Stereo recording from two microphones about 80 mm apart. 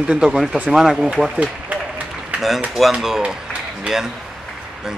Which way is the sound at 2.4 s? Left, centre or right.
Centre.